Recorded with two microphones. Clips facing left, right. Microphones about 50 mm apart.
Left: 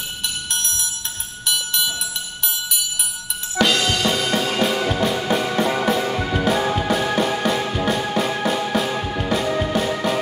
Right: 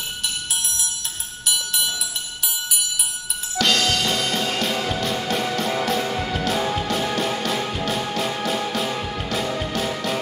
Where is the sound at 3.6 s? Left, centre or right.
Centre.